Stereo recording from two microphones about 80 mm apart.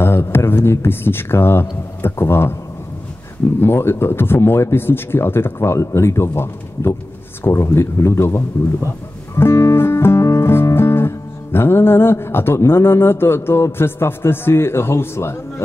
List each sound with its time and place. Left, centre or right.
0.0 s speech: left
3.6 s speech: left
9.3 s music: left